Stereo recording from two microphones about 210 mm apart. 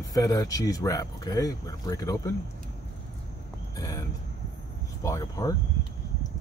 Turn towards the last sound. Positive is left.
turn(degrees=15)  # may be behind; listen again after turning